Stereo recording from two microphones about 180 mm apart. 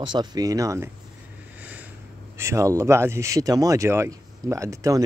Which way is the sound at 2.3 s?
15° right (ahead or behind).